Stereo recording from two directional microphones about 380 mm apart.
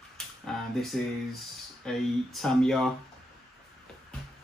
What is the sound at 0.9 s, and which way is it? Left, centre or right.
Speech, centre.